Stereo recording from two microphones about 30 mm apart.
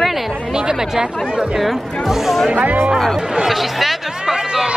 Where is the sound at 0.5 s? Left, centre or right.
Right.